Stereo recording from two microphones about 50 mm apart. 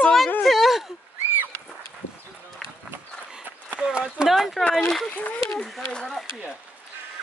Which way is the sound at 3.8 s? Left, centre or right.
Centre.